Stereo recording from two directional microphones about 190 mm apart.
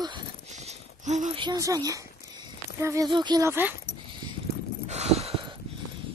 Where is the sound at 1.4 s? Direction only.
20° right (ahead or behind).